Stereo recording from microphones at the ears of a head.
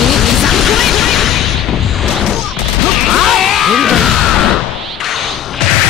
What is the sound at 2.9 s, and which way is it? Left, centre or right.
Music, left.